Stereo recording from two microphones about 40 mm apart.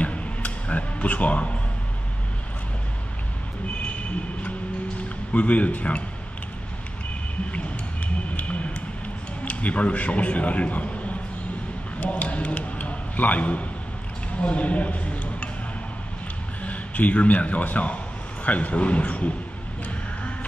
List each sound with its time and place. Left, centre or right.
0.0 s music: left
0.9 s speech: left
5.3 s speech: left
8.4 s speech: left
12.0 s a man's voice: left
16.6 s a sound: left